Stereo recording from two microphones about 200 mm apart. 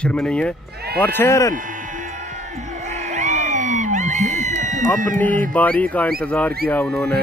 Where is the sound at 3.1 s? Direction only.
35° right (ahead or behind).